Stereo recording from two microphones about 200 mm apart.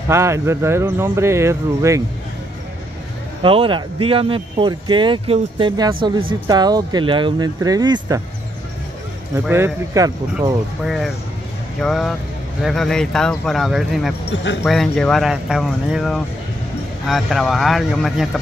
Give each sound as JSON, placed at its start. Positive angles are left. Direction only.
{"t": 0.1, "sound": "speech", "side_deg": -15}
{"t": 3.4, "sound": "speech", "side_deg": -25}
{"t": 9.3, "sound": "speech", "side_deg": -15}
{"t": 10.9, "sound": "speech", "side_deg": 0}
{"t": 14.3, "sound": "speech", "side_deg": 65}
{"t": 14.6, "sound": "speech", "side_deg": 0}